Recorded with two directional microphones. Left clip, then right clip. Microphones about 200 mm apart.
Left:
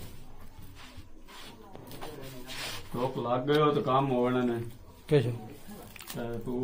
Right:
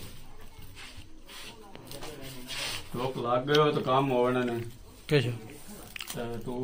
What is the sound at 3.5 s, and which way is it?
A man's voice, 5° left (ahead or behind).